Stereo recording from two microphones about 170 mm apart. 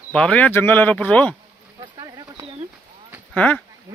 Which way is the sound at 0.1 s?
5° left (ahead or behind).